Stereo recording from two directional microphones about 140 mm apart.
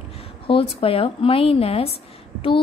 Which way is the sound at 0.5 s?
40° left (ahead or behind).